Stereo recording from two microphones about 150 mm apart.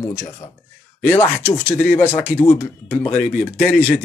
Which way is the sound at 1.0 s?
15° left (ahead or behind).